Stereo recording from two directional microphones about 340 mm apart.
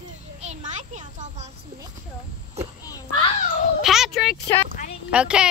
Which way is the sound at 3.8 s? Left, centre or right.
Centre.